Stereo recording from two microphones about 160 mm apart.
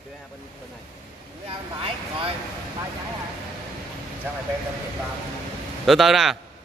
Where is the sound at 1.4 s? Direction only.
35° right (ahead or behind).